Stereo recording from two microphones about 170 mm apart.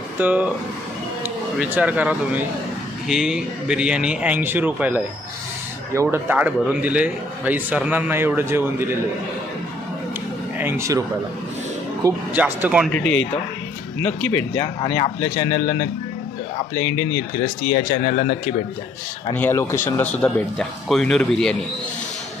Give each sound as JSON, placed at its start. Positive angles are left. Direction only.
{"t": 0.2, "sound": "a man's voice", "side_deg": -10}
{"t": 6.1, "sound": "a man's voice", "side_deg": -10}
{"t": 10.6, "sound": "a man's voice", "side_deg": -20}
{"t": 12.4, "sound": "a man's voice", "side_deg": -10}
{"t": 12.9, "sound": "speech", "side_deg": 5}
{"t": 15.1, "sound": "speech", "side_deg": 25}
{"t": 15.5, "sound": "speech", "side_deg": 50}
{"t": 16.7, "sound": "speech", "side_deg": 15}
{"t": 17.4, "sound": "speech", "side_deg": 55}
{"t": 19.3, "sound": "speech", "side_deg": 15}